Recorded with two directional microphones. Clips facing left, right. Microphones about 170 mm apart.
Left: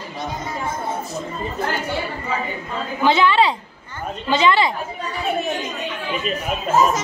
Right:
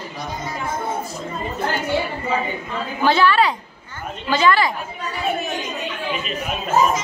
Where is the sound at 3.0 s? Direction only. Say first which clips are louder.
Even; 20° left (ahead or behind).